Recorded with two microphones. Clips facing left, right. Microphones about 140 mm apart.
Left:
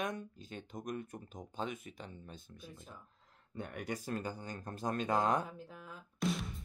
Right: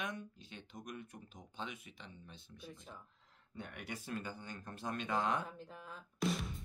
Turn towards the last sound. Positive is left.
turn(degrees=0)  # may be behind; listen again after turning